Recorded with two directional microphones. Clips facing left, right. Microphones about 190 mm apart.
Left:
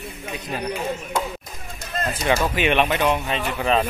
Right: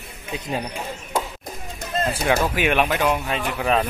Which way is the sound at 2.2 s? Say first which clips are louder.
Left 1 dB; 10° right (ahead or behind).